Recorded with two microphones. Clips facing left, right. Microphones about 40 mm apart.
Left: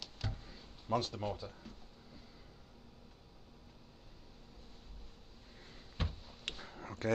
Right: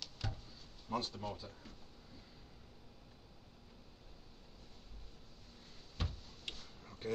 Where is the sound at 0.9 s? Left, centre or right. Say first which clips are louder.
Left 4 dB; left.